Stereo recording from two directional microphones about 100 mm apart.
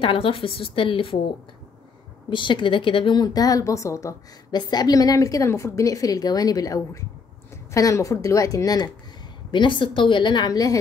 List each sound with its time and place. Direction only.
0.0 s a woman's voice: 60° left (ahead or behind)
2.2 s speech: 55° left (ahead or behind); by 4.2 s 30° left (ahead or behind)
4.5 s a woman's voice: 45° left (ahead or behind)
9.5 s speech: 55° left (ahead or behind)